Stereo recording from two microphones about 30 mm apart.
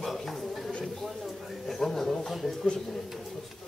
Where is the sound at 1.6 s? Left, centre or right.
Centre.